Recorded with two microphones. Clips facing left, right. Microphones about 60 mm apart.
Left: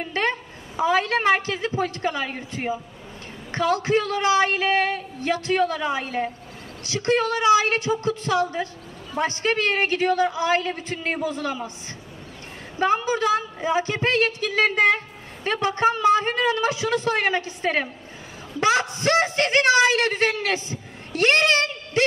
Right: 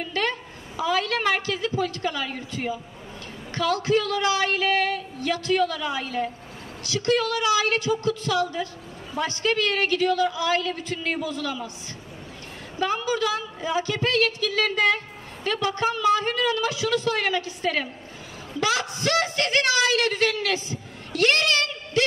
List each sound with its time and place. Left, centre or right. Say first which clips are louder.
0.0 s a woman's voice: left 2 dB; left
12.7 s a woman's voice: left 4 dB; left